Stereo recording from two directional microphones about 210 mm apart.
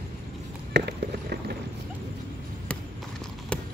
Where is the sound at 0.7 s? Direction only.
50° right (ahead or behind).